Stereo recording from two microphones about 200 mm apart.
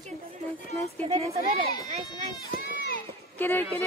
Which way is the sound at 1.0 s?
30° right (ahead or behind).